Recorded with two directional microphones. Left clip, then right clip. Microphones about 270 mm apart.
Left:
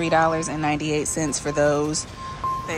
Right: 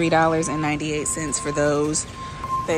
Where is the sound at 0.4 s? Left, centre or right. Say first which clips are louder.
Right 1 dB; centre.